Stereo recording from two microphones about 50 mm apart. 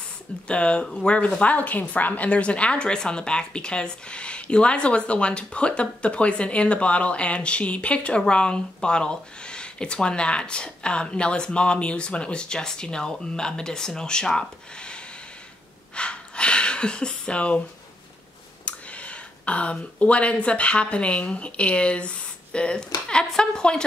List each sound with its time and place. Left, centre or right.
0.5 s a woman's voice: left
14.8 s rub: centre
15.9 s a sound: centre
18.7 s speech: left